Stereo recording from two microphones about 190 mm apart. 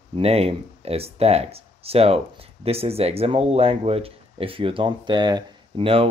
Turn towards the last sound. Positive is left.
turn(degrees=-30)  # may be behind; listen again after turning